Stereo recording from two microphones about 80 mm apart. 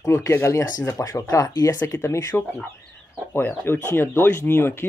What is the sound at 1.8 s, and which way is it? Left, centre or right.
Speech, left.